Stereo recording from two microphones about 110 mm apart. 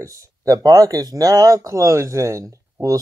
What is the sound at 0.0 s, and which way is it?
Speech, 30° right (ahead or behind).